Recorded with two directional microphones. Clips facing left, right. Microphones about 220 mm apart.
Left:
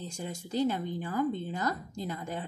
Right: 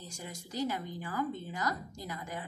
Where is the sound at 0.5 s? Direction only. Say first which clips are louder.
Left 6 dB; 25° left (ahead or behind).